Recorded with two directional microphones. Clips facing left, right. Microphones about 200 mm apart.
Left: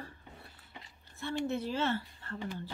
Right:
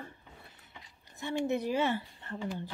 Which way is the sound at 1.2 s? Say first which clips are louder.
Right 3 dB; 15° right (ahead or behind).